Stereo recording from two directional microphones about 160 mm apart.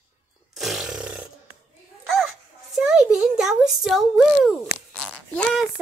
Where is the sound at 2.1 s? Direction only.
Centre (ahead or behind).